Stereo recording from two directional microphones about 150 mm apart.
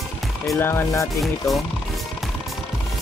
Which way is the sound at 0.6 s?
15° left (ahead or behind).